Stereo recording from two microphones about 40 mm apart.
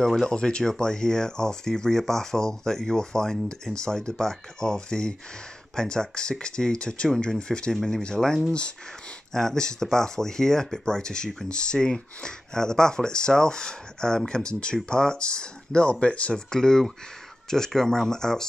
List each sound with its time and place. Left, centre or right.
0.0 s speech: centre; by 16.4 s left
16.4 s speech: centre